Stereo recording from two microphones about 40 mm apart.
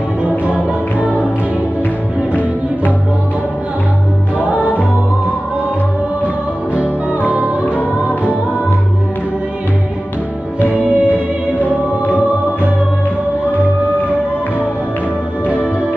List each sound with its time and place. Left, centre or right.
0.5 s music: right
4.4 s music: right
6.7 s music: right
8.1 s music: left
10.7 s music: right